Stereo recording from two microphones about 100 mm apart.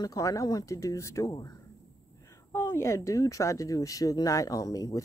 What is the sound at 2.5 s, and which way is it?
Speech, 25° left (ahead or behind).